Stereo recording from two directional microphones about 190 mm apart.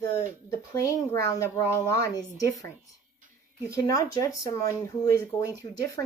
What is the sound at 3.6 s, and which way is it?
Speech, 15° left (ahead or behind).